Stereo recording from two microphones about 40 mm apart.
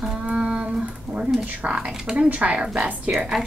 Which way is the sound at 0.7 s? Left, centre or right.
Right.